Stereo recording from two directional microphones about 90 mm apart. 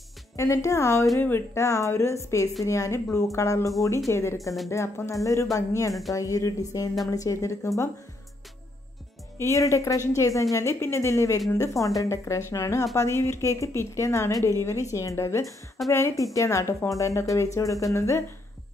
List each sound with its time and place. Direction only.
0.4 s speech: 35° left (ahead or behind)
9.4 s speech: 35° left (ahead or behind)